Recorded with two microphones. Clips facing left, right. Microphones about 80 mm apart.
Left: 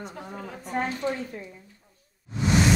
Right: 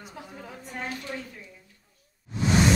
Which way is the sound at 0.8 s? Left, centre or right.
Left.